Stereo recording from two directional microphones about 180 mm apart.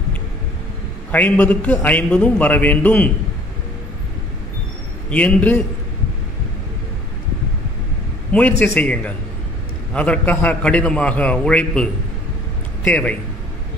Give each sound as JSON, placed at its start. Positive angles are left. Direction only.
{"t": 1.1, "sound": "a man's voice", "side_deg": 10}
{"t": 5.1, "sound": "a man's voice", "side_deg": 10}
{"t": 8.3, "sound": "a man's voice", "side_deg": 10}